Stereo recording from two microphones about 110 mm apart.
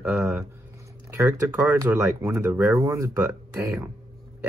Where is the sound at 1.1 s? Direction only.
20° right (ahead or behind).